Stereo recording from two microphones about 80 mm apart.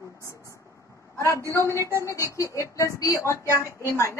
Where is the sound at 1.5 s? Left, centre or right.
Left.